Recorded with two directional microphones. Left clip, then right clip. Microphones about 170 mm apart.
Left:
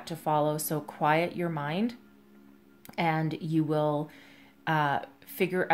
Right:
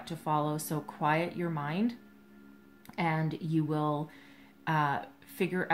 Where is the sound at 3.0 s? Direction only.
45° left (ahead or behind).